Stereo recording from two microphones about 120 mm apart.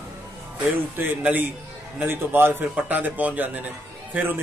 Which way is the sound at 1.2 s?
15° right (ahead or behind).